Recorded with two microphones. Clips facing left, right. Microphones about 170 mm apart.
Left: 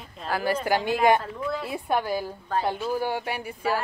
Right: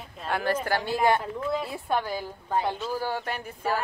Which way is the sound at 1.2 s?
15° right (ahead or behind).